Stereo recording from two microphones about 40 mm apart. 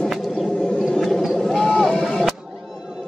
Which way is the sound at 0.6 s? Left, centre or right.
Centre.